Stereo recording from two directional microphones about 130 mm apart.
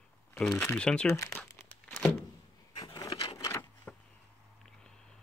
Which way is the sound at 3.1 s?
45° left (ahead or behind).